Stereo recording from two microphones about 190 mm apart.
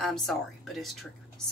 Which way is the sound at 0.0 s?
Centre (ahead or behind).